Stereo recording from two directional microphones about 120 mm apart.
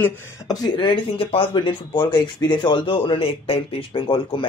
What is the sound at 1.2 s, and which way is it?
Speech, 45° left (ahead or behind).